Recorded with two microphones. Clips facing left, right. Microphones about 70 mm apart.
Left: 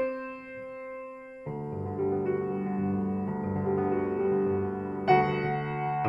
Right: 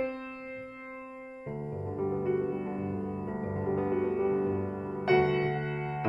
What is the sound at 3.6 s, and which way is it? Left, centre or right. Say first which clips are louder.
Music: left 1 dB; left.